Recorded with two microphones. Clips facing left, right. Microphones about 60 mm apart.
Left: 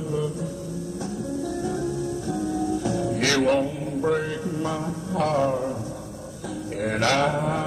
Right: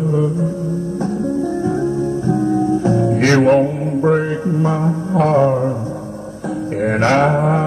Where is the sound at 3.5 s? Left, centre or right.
Right.